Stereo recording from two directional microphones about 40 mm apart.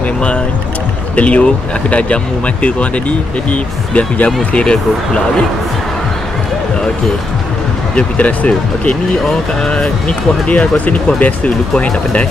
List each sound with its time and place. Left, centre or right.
1.1 s speech: left
7.9 s speech: left
9.7 s speech: left
10.5 s speech: left